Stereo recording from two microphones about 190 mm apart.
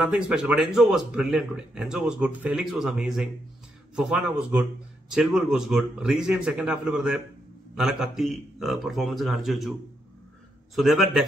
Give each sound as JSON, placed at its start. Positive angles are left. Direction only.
{"t": 0.0, "sound": "a man's voice", "side_deg": -5}